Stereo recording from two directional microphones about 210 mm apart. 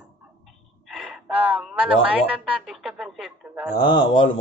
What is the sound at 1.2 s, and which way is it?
Speech, 5° right (ahead or behind).